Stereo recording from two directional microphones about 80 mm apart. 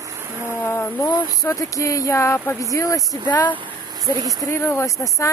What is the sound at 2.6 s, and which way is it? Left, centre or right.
Speech, left.